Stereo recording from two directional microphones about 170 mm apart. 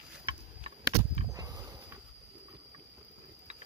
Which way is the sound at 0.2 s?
35° right (ahead or behind).